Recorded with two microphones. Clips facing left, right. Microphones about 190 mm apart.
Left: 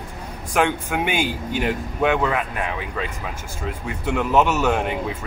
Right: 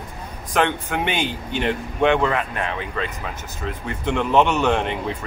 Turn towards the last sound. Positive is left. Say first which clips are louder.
# even
turn(degrees=5)  # may be behind; listen again after turning